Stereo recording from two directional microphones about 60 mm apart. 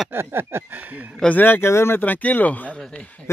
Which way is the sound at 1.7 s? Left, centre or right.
Left.